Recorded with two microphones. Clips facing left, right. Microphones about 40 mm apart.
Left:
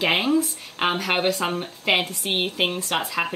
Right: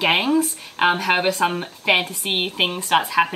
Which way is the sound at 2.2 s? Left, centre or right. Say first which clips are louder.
Right 2 dB; right.